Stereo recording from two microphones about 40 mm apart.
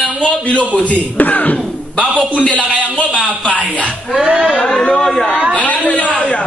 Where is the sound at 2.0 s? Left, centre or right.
Right.